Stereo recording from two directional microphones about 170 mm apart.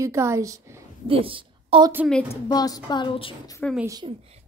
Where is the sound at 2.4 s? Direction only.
20° left (ahead or behind).